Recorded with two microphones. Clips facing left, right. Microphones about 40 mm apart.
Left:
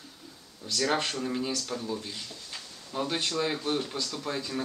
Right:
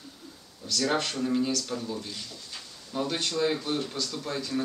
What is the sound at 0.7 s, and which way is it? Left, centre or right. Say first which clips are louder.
Speech: right 1 dB; centre.